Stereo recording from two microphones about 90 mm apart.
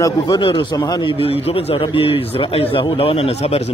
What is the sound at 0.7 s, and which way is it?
Speech, 45° left (ahead or behind).